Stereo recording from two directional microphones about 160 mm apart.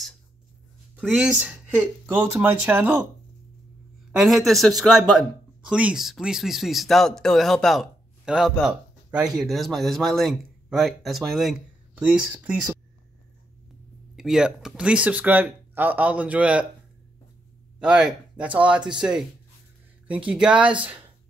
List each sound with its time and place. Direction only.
1.1 s speech: 10° right (ahead or behind)
4.2 s speech: centre (ahead or behind)
14.1 s speech: 5° right (ahead or behind)
17.7 s speech: 5° right (ahead or behind)